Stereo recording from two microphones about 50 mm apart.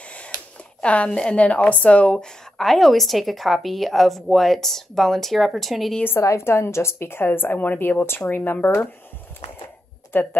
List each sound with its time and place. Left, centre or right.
0.8 s a woman's voice: left
2.1 s a woman's voice: centre
6.2 s a woman's voice: left
10.1 s speech: left